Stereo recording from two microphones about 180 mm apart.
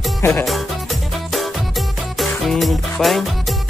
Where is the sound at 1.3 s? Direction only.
Centre (ahead or behind).